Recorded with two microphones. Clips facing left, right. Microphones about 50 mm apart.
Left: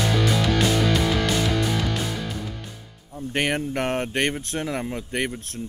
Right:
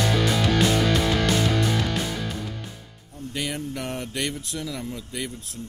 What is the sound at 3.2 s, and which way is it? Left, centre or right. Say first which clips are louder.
Speech: left 6 dB; left.